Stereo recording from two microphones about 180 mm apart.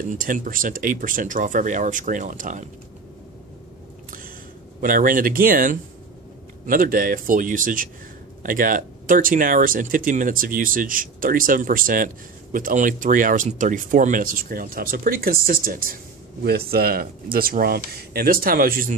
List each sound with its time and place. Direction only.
0.1 s speech: 45° right (ahead or behind)
4.8 s speech: 50° right (ahead or behind)